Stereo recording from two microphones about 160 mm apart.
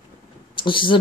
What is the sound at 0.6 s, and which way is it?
Speech, 30° left (ahead or behind).